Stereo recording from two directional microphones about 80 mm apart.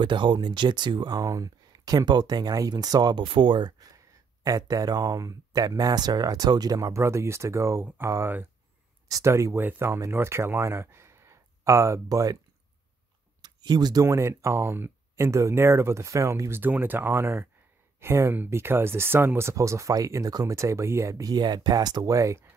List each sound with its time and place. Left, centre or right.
0.0 s speech: right
1.1 s speech: right
13.4 s a sound: right
14.0 s speech: right
20.5 s speech: right